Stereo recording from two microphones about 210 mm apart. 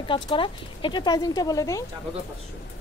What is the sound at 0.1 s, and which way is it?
A woman's voice, 25° left (ahead or behind).